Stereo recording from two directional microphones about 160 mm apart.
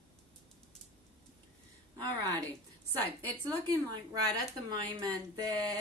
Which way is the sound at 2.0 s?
25° right (ahead or behind).